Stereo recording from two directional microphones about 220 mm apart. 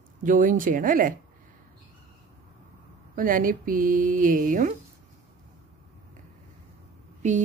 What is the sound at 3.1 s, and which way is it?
Speech, 40° right (ahead or behind).